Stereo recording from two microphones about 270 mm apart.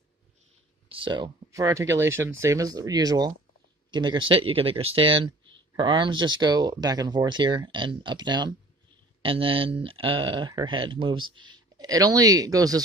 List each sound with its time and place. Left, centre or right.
0.8 s speech: centre